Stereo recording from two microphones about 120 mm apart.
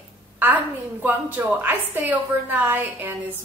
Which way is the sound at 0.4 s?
15° right (ahead or behind).